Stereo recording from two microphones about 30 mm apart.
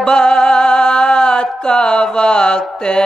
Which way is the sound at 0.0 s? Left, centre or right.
Left.